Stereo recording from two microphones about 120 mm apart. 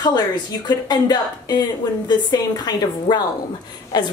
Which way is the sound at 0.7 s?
35° left (ahead or behind).